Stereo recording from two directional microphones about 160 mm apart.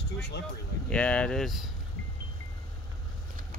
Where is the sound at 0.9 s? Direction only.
5° left (ahead or behind).